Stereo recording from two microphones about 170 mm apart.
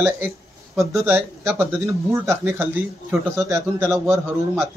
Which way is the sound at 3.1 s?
Centre (ahead or behind).